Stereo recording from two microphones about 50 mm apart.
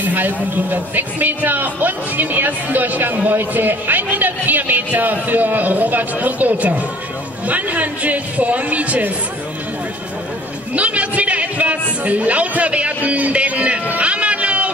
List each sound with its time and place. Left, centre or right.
0.0 s a man's voice: right
10.7 s a man's voice: right
13.9 s music: right